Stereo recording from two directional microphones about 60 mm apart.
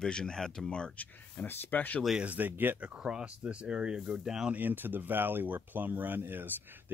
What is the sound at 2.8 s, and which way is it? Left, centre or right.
Speech, centre.